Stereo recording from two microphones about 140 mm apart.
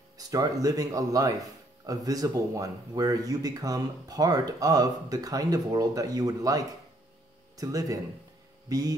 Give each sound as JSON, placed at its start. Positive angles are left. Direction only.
{"t": 0.3, "sound": "speech", "side_deg": -25}